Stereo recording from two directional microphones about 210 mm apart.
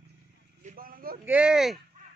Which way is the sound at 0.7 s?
45° right (ahead or behind).